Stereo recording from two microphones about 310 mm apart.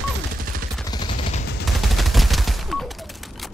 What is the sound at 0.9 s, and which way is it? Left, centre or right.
Gunshot, centre.